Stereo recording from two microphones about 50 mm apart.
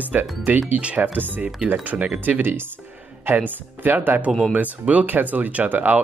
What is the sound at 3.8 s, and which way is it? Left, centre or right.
Speech, right.